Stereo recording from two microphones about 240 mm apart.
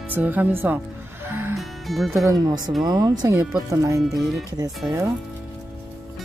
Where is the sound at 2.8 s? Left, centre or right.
Centre.